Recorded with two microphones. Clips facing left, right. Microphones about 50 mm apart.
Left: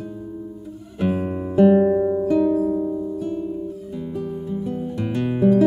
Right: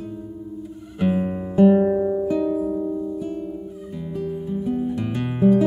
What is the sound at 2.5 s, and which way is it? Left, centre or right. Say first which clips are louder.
Music: left 3 dB; centre.